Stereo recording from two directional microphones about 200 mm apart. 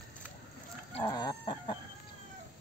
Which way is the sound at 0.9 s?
20° left (ahead or behind).